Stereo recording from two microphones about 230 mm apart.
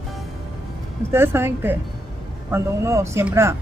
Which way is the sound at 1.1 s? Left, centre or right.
Centre.